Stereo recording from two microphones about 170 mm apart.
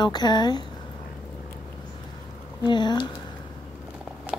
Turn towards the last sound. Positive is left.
turn(degrees=-5)  # may be behind; listen again after turning